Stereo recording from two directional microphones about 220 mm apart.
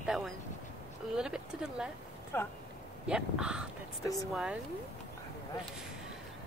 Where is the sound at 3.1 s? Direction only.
5° right (ahead or behind).